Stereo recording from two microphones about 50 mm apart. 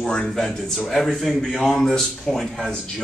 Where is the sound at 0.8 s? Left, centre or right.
Centre.